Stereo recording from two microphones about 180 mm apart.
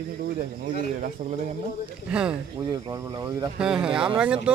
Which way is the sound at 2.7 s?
20° right (ahead or behind).